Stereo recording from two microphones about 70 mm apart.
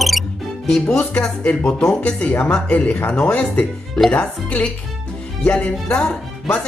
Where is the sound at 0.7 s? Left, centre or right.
Centre.